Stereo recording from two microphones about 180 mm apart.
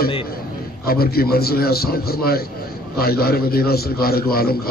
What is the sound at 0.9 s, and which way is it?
A man's voice, 55° left (ahead or behind).